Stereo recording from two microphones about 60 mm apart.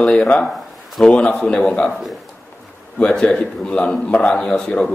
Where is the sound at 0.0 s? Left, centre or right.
Centre.